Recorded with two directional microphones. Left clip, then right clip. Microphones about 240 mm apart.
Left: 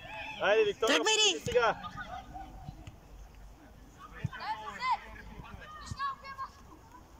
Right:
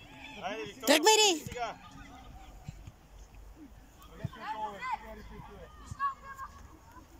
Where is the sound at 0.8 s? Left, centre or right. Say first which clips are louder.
Right 7 dB; centre.